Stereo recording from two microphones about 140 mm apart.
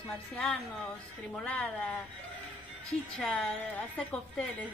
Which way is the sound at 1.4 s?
10° left (ahead or behind).